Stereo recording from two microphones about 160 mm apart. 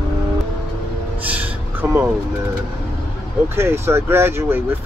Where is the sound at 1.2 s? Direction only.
10° right (ahead or behind).